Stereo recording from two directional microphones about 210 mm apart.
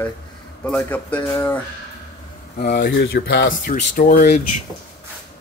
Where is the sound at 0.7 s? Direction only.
5° left (ahead or behind).